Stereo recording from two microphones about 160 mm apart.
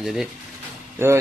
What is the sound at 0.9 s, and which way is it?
Speech, 15° right (ahead or behind).